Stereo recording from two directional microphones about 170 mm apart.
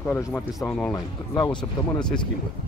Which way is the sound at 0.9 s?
25° left (ahead or behind).